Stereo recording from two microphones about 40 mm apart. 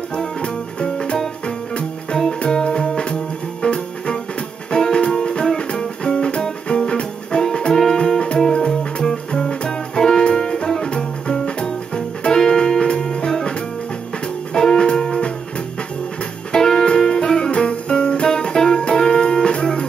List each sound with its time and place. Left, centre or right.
0.1 s music: left
2.4 s music: left
14.5 s music: centre
16.5 s music: centre